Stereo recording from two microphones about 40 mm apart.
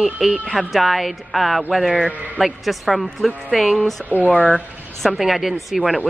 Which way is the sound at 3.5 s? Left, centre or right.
Centre.